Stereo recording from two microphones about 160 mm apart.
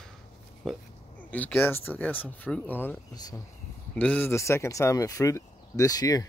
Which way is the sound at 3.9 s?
10° left (ahead or behind).